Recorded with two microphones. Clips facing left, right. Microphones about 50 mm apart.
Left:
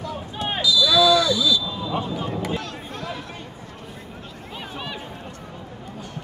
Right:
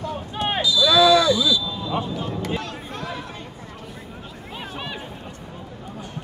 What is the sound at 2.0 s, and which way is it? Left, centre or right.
Speech, centre.